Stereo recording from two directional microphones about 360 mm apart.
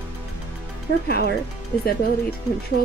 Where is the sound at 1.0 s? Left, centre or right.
Left.